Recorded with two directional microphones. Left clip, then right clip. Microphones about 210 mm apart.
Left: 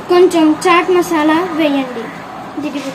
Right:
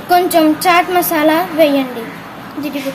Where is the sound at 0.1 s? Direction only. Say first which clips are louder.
Left 1 dB; 60° right (ahead or behind).